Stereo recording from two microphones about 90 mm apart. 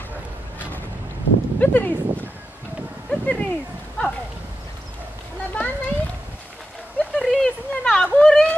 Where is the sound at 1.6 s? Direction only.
20° left (ahead or behind).